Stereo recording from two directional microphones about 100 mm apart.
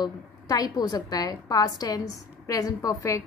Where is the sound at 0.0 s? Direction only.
40° left (ahead or behind).